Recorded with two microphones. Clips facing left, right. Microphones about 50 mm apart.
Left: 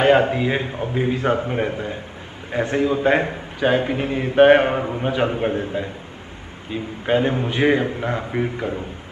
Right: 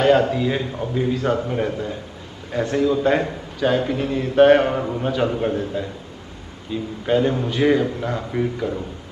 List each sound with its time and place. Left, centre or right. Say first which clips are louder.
0.0 s a man's voice: left 1 dB; left